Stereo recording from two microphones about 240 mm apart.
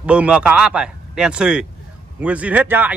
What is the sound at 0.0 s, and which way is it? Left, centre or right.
A man's voice, centre.